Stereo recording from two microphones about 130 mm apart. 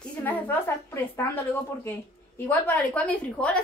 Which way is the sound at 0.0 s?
15° left (ahead or behind).